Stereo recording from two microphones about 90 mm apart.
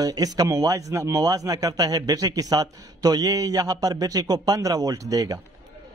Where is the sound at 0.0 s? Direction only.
45° right (ahead or behind).